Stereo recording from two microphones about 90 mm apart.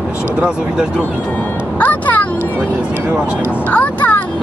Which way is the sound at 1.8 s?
20° left (ahead or behind).